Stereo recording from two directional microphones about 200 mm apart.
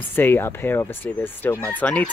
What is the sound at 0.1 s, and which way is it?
Speech, 10° left (ahead or behind).